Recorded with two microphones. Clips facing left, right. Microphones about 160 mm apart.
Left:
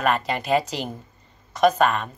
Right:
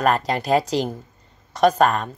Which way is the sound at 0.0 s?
35° right (ahead or behind).